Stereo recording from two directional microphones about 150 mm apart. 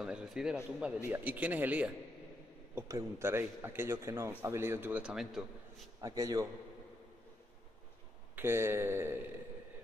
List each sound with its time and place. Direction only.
0.0 s a sound: 5° right (ahead or behind)
0.7 s a man's voice: 5° right (ahead or behind)
5.9 s a man's voice: 25° right (ahead or behind)
8.4 s a man's voice: 15° right (ahead or behind)